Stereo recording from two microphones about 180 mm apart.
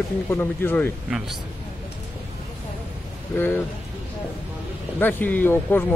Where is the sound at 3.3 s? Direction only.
10° left (ahead or behind).